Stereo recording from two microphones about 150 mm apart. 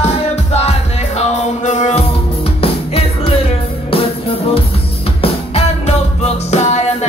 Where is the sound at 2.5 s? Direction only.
40° left (ahead or behind).